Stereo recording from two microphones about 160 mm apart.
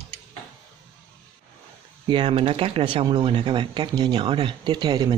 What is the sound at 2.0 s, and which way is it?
Speech, 30° right (ahead or behind).